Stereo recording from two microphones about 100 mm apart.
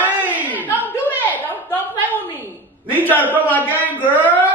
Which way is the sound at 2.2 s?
20° right (ahead or behind).